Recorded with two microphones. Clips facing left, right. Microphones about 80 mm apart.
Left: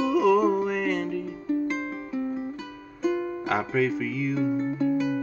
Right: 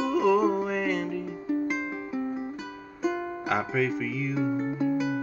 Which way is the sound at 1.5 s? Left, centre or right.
Centre.